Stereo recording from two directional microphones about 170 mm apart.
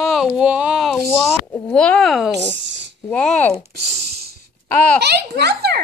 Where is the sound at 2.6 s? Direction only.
90° right.